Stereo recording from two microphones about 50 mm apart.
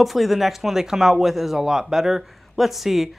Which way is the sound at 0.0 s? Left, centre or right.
Centre.